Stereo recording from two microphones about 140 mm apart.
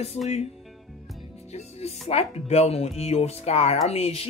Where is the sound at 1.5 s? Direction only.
50° left (ahead or behind).